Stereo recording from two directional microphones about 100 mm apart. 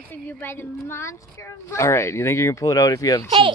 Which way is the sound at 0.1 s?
20° left (ahead or behind).